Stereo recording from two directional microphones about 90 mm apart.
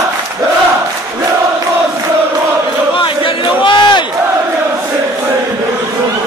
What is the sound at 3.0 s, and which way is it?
Crowd, 60° left (ahead or behind).